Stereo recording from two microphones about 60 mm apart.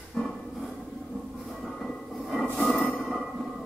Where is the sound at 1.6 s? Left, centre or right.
Centre.